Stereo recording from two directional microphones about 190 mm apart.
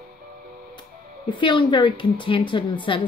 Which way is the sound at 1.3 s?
25° left (ahead or behind).